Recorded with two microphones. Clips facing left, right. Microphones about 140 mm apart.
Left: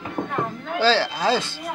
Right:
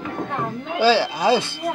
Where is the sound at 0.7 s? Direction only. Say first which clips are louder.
Right 3 dB; 15° right (ahead or behind).